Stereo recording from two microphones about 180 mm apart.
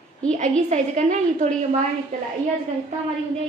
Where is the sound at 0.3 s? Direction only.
40° right (ahead or behind).